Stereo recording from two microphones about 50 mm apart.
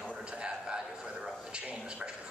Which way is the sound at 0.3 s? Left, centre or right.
Centre.